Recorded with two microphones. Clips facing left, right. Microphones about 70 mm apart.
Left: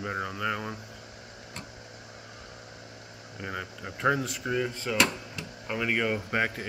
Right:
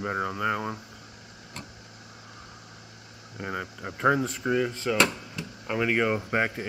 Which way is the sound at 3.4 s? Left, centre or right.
Centre.